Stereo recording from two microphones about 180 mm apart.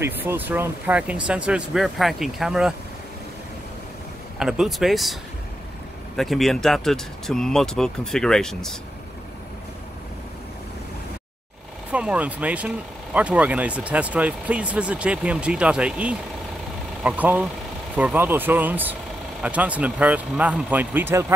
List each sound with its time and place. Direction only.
0.0 s speech: 10° right (ahead or behind)
4.4 s speech: 5° right (ahead or behind)
6.1 s speech: centre (ahead or behind)
11.9 s speech: 5° right (ahead or behind)